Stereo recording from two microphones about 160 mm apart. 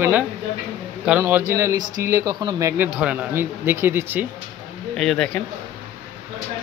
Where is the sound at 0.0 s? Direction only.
10° right (ahead or behind).